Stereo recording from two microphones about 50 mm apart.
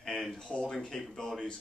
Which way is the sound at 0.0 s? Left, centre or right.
Centre.